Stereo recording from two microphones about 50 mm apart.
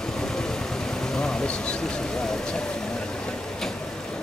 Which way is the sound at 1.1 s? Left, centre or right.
Centre.